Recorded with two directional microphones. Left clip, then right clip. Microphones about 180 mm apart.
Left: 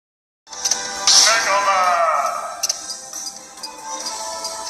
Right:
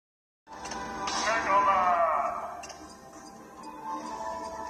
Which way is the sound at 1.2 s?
25° left (ahead or behind).